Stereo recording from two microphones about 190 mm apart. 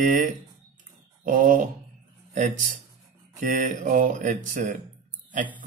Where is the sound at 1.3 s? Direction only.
45° right (ahead or behind).